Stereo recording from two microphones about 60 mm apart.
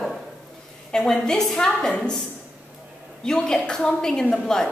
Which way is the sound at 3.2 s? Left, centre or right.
Centre.